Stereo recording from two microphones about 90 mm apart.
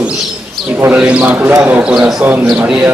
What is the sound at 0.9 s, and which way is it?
A man's voice, 15° right (ahead or behind).